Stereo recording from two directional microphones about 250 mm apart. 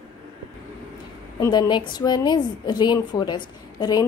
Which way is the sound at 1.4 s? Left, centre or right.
Centre.